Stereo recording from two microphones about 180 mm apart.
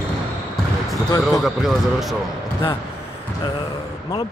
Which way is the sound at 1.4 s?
Centre (ahead or behind).